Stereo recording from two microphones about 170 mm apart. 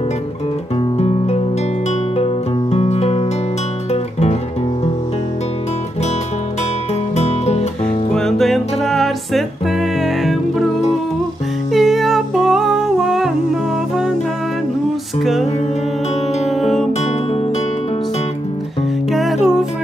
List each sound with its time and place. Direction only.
0.9 s music: 40° left (ahead or behind)
7.2 s music: 40° left (ahead or behind)
8.1 s music: 5° left (ahead or behind)
11.7 s humming: centre (ahead or behind)
16.4 s music: centre (ahead or behind)
19.1 s music: centre (ahead or behind)